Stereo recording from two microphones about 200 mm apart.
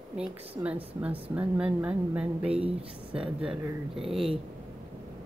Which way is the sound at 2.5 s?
30° right (ahead or behind).